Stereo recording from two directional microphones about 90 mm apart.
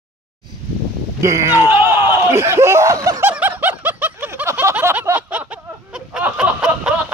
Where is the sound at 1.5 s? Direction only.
25° right (ahead or behind).